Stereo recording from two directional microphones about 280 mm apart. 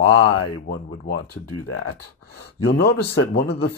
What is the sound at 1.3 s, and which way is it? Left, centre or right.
Speech, left.